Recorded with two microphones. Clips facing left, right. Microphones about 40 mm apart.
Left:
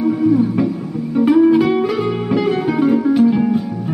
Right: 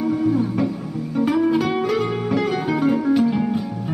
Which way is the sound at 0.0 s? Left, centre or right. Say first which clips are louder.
Left 5 dB; left.